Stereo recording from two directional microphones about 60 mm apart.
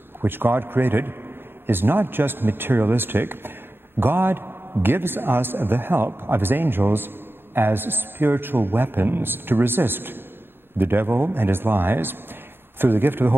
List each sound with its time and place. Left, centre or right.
0.2 s a man's voice: right